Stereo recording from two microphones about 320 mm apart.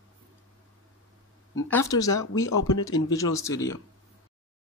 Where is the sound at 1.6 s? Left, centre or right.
Centre.